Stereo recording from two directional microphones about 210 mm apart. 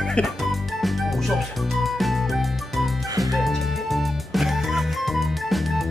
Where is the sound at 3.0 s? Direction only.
15° right (ahead or behind).